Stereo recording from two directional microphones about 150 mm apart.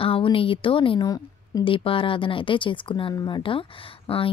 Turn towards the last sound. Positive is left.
turn(degrees=35)  # may be behind; listen again after turning